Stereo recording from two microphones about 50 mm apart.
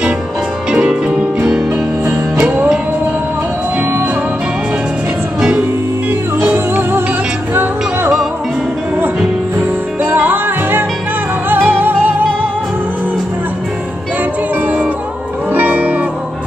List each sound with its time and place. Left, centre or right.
0.7 s music: centre
6.4 s music: right
10.0 s music: right
15.5 s music: right